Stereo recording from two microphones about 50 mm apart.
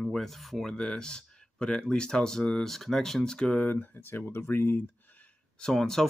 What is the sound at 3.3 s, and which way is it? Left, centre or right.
Speech, left.